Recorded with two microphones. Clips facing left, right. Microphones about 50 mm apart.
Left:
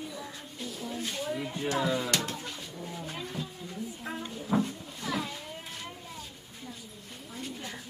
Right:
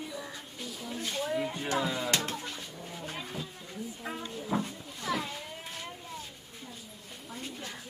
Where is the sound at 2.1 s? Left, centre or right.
Centre.